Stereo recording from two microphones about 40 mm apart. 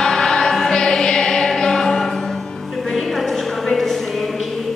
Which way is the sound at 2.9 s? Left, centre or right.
Centre.